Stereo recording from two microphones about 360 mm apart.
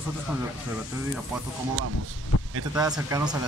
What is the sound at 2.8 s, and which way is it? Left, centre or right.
Speech, centre.